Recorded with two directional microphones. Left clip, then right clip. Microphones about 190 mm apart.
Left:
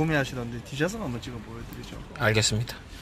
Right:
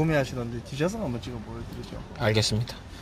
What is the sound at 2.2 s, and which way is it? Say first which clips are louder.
Speech: left 1 dB; 10° right (ahead or behind).